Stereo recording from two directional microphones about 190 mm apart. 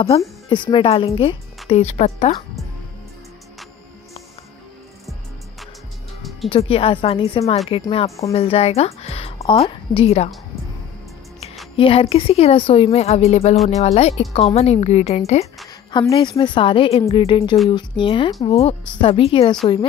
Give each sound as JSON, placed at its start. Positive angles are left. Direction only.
{"t": 0.5, "sound": "a woman's voice", "side_deg": 25}
{"t": 6.5, "sound": "a woman's voice", "side_deg": 30}
{"t": 11.7, "sound": "a woman's voice", "side_deg": 30}
{"t": 15.9, "sound": "a woman's voice", "side_deg": 25}